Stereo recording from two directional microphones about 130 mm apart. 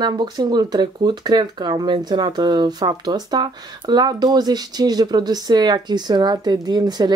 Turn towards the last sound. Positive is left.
turn(degrees=-30)  # may be behind; listen again after turning